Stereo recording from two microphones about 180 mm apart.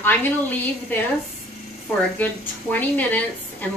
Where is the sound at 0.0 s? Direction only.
10° left (ahead or behind).